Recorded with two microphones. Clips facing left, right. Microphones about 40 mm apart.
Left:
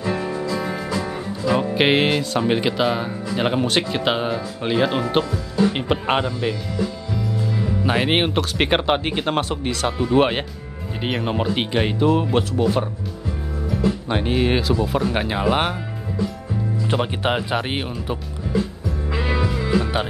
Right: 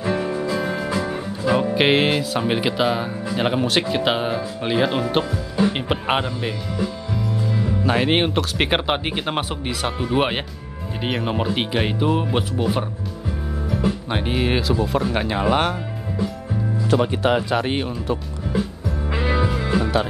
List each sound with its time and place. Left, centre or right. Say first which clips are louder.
0.0 s music: right 1 dB; centre
0.8 s music: right 1 dB; right
1.5 s speech: right 1 dB; centre
7.8 s speech: even; centre
16.8 s speech: right 4 dB; left
19.1 s music: right 1 dB; centre